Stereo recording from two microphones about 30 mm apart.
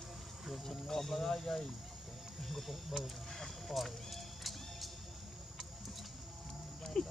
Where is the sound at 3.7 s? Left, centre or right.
Centre.